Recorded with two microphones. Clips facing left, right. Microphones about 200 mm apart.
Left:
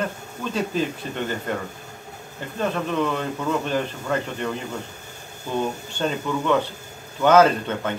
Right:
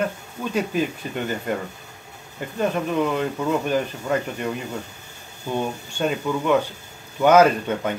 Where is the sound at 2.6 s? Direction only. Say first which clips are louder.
Right 2 dB; 15° right (ahead or behind).